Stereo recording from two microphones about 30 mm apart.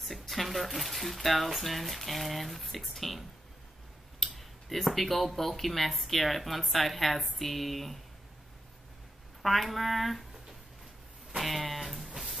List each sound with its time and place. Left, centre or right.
0.0 s speech: centre
4.2 s speech: centre
9.4 s speech: centre
11.3 s a sound: centre